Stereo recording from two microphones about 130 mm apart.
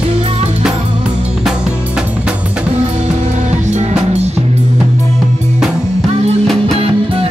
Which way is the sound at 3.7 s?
60° right (ahead or behind).